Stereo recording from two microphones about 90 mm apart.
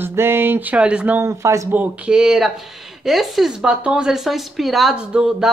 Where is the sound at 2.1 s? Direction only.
5° right (ahead or behind).